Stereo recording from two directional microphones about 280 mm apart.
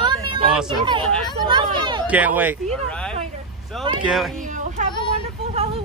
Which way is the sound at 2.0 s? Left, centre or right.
Centre.